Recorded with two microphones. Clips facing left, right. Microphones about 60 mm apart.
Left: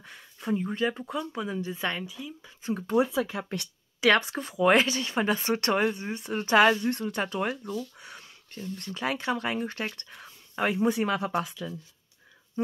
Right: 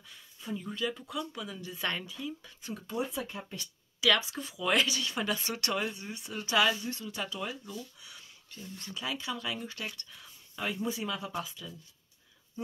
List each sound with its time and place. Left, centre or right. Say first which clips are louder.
0.0 s speech: left 9 dB; left
1.9 s speech: left 2 dB; centre
3.0 s speech: left 9 dB; left
4.0 s speech: left 5 dB; left
8.0 s a sound: left 6 dB; left
8.9 s speech: left 7 dB; left